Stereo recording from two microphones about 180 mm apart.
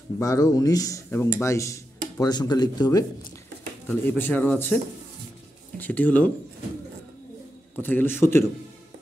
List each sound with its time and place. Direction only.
0.2 s speech: 20° left (ahead or behind)
3.8 s speech: 10° left (ahead or behind)
5.8 s speech: 10° left (ahead or behind)
7.8 s speech: 10° left (ahead or behind)